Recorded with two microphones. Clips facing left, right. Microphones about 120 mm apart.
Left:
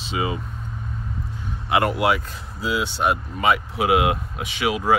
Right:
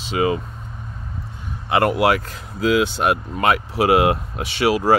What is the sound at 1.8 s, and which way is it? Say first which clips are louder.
Speech: right 3 dB; 60° right (ahead or behind).